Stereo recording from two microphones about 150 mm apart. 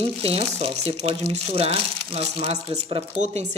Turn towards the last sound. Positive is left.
turn(degrees=-50)  # may be behind; listen again after turning